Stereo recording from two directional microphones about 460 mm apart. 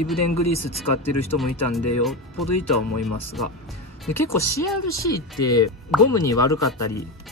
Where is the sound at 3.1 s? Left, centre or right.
Left.